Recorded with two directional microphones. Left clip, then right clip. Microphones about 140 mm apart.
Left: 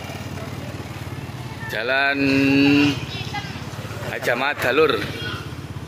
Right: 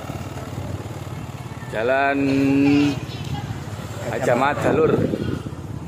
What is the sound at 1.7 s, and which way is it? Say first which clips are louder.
Speech: right 1 dB; 15° right (ahead or behind).